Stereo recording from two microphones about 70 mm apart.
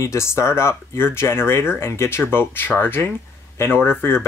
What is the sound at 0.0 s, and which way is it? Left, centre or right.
Speech, left.